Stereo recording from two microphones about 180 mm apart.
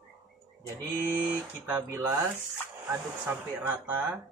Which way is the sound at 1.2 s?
10° right (ahead or behind).